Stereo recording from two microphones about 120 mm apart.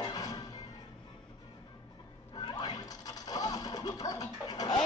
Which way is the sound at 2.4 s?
35° left (ahead or behind).